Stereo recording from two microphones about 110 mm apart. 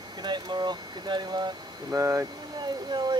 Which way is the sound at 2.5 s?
45° right (ahead or behind).